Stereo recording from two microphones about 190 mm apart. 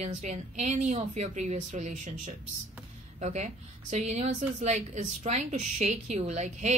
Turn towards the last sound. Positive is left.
turn(degrees=-35)  # may be behind; listen again after turning